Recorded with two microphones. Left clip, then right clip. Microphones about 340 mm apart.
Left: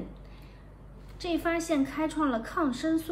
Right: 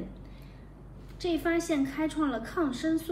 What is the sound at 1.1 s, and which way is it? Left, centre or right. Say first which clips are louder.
A woman's voice: right 1 dB; left.